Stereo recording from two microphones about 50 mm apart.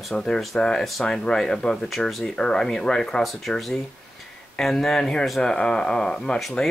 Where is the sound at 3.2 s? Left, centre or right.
Centre.